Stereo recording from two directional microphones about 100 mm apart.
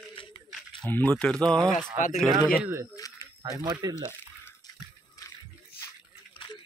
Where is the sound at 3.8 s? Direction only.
40° right (ahead or behind).